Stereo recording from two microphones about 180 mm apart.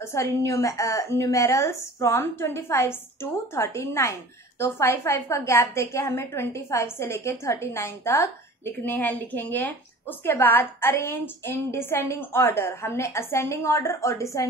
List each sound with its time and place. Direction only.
0.0 s a woman's voice: 15° left (ahead or behind)